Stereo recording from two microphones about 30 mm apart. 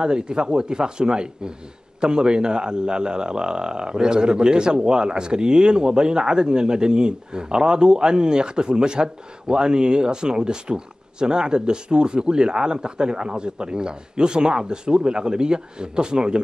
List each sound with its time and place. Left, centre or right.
0.0 s a man's voice: right